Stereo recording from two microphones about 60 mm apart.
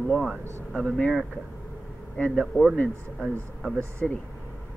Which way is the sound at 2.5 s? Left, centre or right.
Left.